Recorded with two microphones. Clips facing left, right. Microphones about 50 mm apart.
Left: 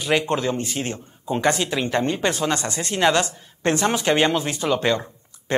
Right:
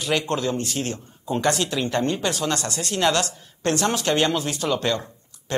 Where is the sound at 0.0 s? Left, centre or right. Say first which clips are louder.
Left 2 dB; centre.